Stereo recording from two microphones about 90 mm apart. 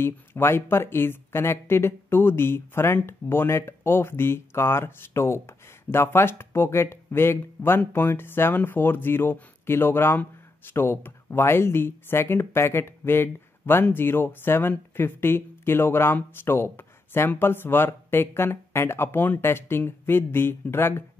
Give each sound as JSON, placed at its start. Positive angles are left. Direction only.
{"t": 0.0, "sound": "speech", "side_deg": 25}